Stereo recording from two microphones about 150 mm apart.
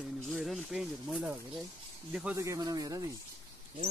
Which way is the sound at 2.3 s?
20° right (ahead or behind).